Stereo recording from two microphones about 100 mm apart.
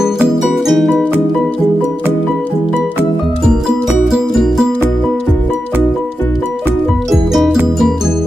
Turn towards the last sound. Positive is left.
turn(degrees=-5)  # may be behind; listen again after turning